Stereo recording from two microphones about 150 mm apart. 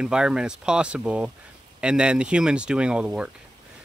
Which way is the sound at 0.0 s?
5° right (ahead or behind).